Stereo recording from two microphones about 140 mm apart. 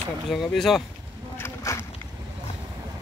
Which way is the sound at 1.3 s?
20° left (ahead or behind).